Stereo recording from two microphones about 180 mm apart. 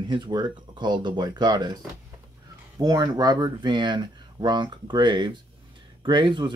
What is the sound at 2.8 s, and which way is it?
Speech, 20° right (ahead or behind).